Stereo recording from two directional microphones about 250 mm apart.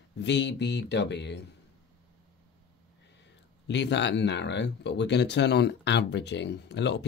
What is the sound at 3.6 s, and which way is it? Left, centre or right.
Speech, left.